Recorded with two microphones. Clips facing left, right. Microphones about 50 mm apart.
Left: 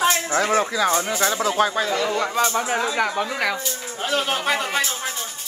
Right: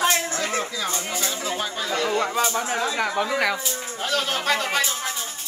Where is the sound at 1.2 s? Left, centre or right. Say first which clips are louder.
Left 7 dB; left.